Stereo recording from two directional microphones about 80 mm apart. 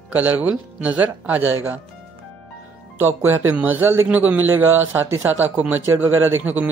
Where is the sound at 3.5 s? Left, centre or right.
Right.